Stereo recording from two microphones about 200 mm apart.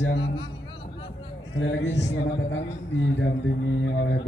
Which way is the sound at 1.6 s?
65° left (ahead or behind).